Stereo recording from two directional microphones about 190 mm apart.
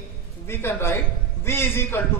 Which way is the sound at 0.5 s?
10° left (ahead or behind).